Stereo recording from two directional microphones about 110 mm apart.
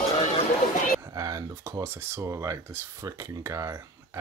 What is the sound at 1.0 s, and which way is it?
Speech, 30° right (ahead or behind).